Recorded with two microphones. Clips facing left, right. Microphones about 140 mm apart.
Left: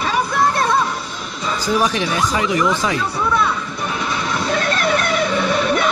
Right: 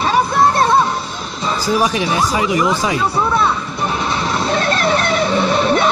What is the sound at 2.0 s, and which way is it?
Speech, 30° right (ahead or behind).